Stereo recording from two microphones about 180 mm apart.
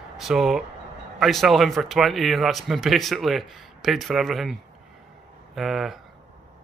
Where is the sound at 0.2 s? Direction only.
Centre (ahead or behind).